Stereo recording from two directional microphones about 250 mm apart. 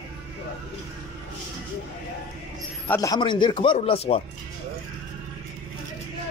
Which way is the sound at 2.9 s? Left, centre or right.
Centre.